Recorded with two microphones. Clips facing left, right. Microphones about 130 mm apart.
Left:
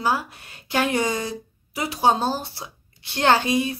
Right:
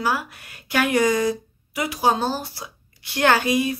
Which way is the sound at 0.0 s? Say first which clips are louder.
Even; 30° left (ahead or behind).